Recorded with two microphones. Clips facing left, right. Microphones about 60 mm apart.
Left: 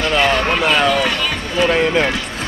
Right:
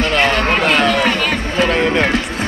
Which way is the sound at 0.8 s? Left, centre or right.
Right.